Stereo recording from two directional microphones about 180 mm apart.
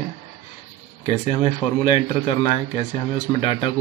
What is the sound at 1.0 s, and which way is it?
Speech, 30° left (ahead or behind).